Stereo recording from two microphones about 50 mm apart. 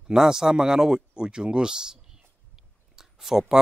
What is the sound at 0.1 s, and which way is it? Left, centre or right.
Speech, centre.